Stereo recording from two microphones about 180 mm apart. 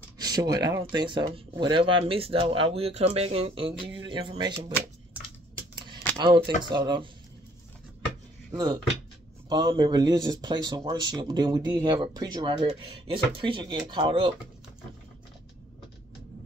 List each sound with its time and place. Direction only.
0.2 s speech: 20° right (ahead or behind)
6.1 s speech: 25° right (ahead or behind)
9.5 s speech: 25° right (ahead or behind)